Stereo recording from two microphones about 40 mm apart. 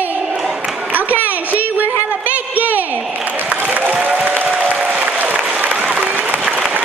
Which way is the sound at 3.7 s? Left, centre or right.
Right.